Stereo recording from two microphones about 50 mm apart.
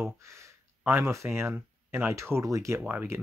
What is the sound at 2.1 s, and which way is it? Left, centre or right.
Speech, right.